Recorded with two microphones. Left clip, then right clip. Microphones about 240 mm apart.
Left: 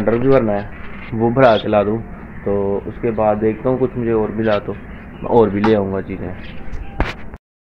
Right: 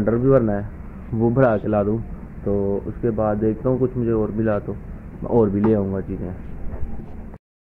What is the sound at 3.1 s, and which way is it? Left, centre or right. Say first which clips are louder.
Speech: left 7 dB; centre.